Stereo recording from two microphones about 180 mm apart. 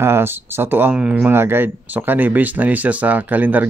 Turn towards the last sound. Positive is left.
turn(degrees=-10)  # may be behind; listen again after turning